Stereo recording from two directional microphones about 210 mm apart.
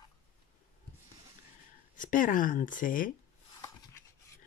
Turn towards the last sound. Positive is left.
turn(degrees=40)  # may be behind; listen again after turning